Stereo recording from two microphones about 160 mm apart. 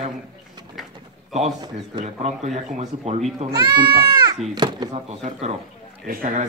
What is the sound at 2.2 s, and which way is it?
A man's voice, 45° right (ahead or behind).